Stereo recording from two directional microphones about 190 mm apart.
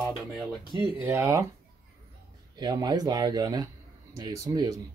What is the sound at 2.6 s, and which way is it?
Speech, 20° right (ahead or behind).